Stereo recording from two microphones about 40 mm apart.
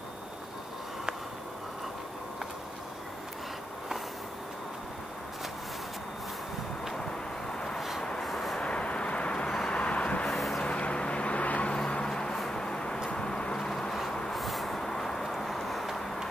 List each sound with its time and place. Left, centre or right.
7.5 s a sound: centre
8.2 s vehicle: centre
8.5 s vehicle: left
10.2 s vehicle: centre
10.6 s vehicle: left
11.7 s vehicle: left
13.1 s a sound: left
14.3 s vehicle: centre
14.8 s vehicle: centre